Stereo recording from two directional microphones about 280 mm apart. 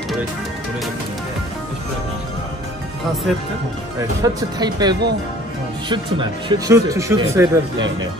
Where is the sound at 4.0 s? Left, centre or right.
Centre.